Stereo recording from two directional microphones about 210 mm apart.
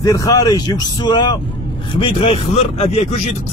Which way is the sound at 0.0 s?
15° left (ahead or behind).